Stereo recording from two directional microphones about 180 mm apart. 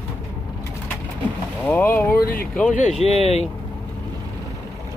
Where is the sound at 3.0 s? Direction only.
35° left (ahead or behind).